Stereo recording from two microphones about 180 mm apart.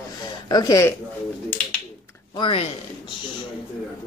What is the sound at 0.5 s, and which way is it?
Speech, 20° left (ahead or behind).